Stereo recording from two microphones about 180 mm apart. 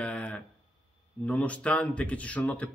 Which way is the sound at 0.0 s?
5° left (ahead or behind).